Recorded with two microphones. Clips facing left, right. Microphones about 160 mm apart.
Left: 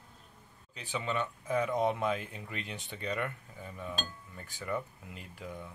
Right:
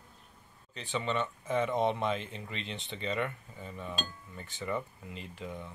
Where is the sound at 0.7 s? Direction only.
5° left (ahead or behind).